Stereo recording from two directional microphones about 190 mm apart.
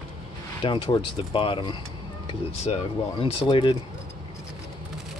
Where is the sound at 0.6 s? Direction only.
25° left (ahead or behind).